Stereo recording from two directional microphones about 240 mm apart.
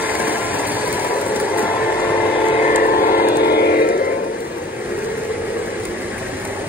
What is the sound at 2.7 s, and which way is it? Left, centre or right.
Vehicle, left.